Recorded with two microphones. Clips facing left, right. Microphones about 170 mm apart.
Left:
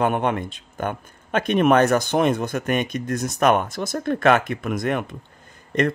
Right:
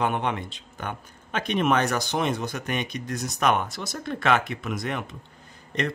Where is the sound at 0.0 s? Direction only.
50° left (ahead or behind).